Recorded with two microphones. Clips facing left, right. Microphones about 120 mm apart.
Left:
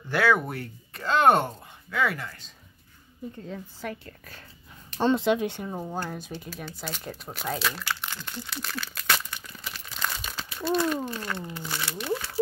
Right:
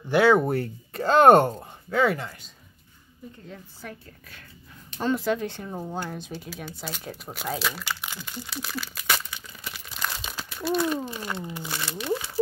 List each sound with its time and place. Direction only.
0.1 s speech: 20° right (ahead or behind)
0.4 s speech: 35° right (ahead or behind)
5.0 s speech: 25° left (ahead or behind); by 9.2 s 5° right (ahead or behind)
9.3 s crumpling: 5° right (ahead or behind)
11.1 s speech: 10° right (ahead or behind)
12.0 s a sound: 5° right (ahead or behind)